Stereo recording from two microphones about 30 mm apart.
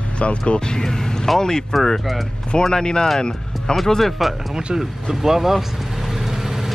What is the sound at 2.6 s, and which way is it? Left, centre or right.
Speech, left.